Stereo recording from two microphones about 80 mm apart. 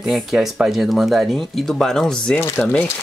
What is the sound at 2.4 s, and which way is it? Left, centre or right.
Speech, left.